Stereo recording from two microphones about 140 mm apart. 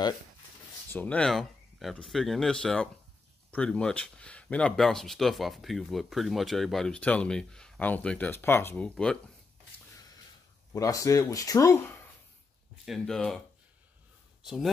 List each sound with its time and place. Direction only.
0.9 s speech: 10° left (ahead or behind)
10.7 s speech: 25° left (ahead or behind)
12.8 s speech: centre (ahead or behind)
14.4 s a man's voice: 5° right (ahead or behind)